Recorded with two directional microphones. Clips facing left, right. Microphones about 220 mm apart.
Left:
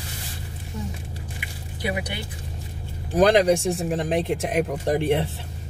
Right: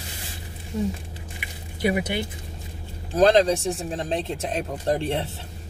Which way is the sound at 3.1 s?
15° left (ahead or behind).